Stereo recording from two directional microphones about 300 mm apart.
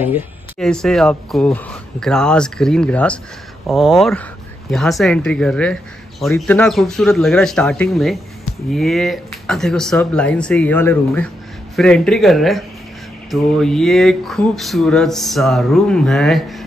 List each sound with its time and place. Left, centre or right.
0.0 s speech: centre